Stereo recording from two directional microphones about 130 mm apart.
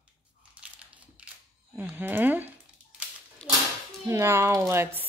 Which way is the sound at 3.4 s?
5° left (ahead or behind).